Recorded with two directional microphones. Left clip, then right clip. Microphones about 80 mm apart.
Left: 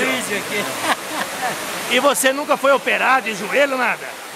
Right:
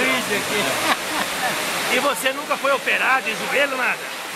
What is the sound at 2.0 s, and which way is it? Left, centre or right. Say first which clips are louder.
Speech: left 5 dB; left.